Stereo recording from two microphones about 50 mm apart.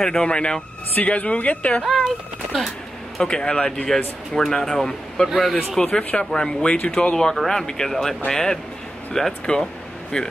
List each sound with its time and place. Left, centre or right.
0.0 s speech: centre
0.9 s speech: left
1.9 s speech: centre
3.2 s a man's voice: centre
5.9 s speech: centre